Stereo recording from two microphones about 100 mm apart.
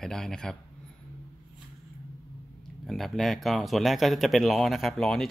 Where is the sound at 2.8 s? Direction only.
Centre (ahead or behind).